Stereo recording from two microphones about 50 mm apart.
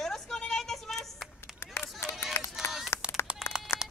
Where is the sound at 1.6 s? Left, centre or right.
Left.